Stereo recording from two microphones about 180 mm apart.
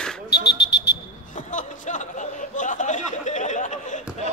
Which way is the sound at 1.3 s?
45° left (ahead or behind).